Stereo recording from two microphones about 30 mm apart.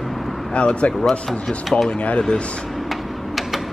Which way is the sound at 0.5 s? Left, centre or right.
Left.